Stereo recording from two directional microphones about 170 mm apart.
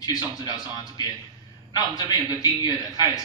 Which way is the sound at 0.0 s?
25° left (ahead or behind).